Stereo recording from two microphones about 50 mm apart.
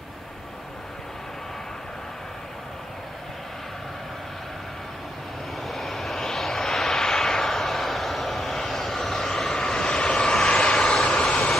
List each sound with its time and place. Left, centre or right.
5.7 s vehicle: centre